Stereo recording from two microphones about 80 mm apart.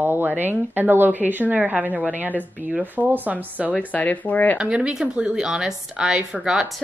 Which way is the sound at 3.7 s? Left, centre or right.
Centre.